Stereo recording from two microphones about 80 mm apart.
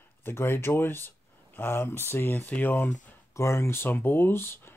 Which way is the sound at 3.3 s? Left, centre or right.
Left.